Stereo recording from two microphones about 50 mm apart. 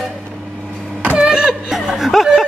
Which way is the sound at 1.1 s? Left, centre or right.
Centre.